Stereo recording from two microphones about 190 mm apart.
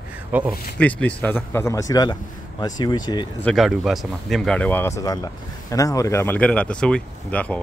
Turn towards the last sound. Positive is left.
turn(degrees=5)  # may be behind; listen again after turning